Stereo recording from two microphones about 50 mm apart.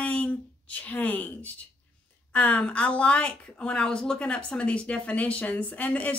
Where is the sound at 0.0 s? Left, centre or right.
Left.